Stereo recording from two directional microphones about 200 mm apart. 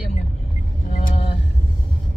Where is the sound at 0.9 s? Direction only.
40° left (ahead or behind).